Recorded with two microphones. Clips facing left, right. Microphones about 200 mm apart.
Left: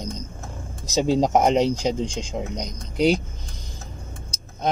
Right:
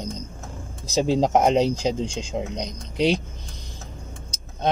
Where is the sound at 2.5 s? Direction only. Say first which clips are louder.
Even; 25° right (ahead or behind).